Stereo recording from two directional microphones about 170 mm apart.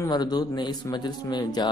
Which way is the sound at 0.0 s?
25° left (ahead or behind).